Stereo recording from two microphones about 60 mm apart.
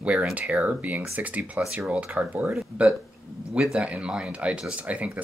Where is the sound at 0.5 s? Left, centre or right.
Right.